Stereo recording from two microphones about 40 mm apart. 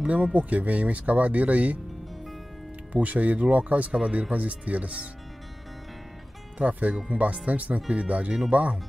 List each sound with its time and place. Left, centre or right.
0.0 s speech: right
2.9 s speech: right
3.9 s speech: right
6.6 s speech: right